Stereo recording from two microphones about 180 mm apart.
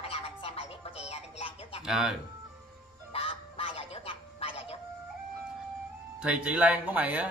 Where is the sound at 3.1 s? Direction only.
30° left (ahead or behind).